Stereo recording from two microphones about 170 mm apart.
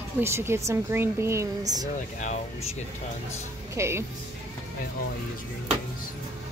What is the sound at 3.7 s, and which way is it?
Speech, 15° right (ahead or behind).